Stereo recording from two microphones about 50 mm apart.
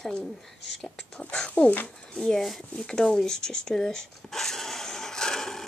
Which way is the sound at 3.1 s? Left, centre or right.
Centre.